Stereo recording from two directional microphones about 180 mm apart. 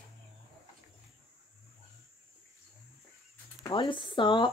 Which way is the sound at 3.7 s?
30° left (ahead or behind).